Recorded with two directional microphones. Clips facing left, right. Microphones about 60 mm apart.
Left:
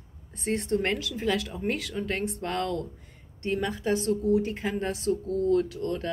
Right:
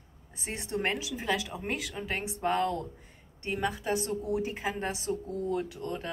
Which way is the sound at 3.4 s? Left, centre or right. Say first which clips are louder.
Left 4 dB; centre.